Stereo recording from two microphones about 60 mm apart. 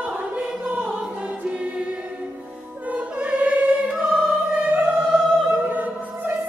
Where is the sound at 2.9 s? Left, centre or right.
Right.